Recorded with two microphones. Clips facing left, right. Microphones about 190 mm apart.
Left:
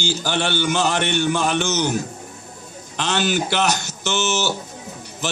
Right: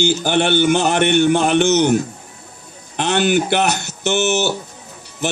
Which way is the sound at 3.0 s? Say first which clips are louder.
Right 5 dB; 60° right (ahead or behind).